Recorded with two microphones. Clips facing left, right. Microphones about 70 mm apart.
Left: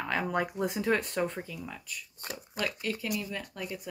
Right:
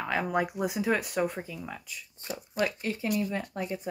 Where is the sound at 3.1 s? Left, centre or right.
Right.